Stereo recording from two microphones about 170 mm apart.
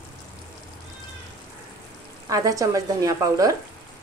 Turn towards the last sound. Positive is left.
turn(degrees=-20)  # may be behind; listen again after turning